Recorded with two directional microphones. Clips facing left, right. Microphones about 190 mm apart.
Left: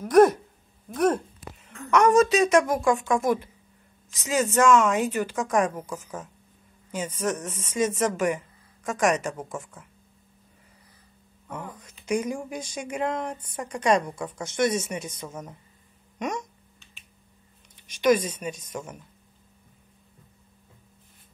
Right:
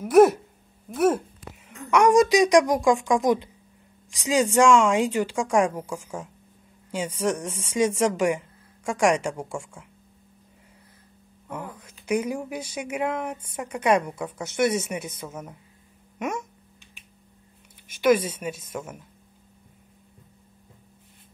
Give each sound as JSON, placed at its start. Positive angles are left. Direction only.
{"t": 0.0, "sound": "speech", "side_deg": -5}
{"t": 11.4, "sound": "a sound", "side_deg": -10}
{"t": 11.8, "sound": "speech", "side_deg": -10}
{"t": 18.0, "sound": "speech", "side_deg": -10}